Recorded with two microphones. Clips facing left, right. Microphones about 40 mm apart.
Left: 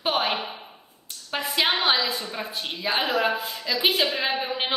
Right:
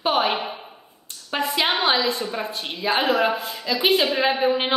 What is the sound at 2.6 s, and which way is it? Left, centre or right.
A woman's voice, centre.